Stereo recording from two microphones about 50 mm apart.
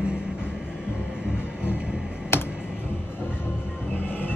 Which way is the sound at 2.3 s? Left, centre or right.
Left.